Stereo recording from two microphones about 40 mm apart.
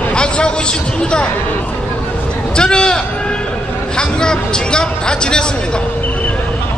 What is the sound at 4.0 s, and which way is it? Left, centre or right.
Speech, left.